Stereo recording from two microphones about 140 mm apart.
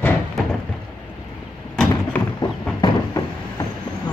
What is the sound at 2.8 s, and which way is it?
Vehicle, 25° left (ahead or behind).